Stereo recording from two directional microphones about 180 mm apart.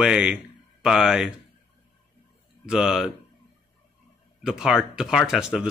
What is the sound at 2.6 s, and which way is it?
Speech, 5° right (ahead or behind).